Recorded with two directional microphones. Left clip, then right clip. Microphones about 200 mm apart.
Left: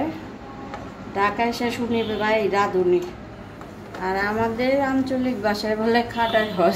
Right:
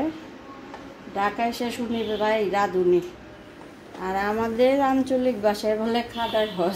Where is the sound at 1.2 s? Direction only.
35° right (ahead or behind).